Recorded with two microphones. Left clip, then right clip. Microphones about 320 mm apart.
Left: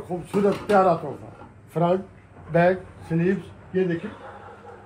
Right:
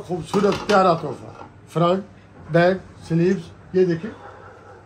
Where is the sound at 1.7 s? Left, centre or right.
Right.